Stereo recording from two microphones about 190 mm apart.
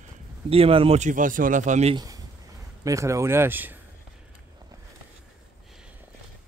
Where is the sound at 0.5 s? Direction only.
30° right (ahead or behind).